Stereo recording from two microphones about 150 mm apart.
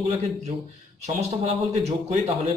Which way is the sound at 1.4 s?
45° right (ahead or behind).